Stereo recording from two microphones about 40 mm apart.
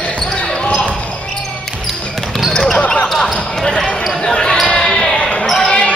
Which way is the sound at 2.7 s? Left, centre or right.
Left.